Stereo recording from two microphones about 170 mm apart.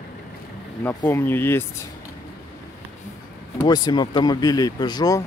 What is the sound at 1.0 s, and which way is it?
Speech, 15° left (ahead or behind).